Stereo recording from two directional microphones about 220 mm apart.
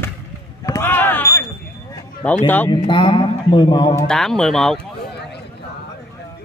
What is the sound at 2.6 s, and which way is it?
Speech, 20° left (ahead or behind).